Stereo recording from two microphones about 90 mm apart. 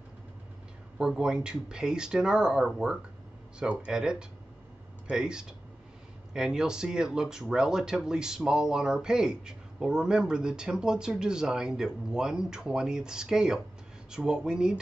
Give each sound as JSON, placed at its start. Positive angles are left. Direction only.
{"t": 0.9, "sound": "speech", "side_deg": -5}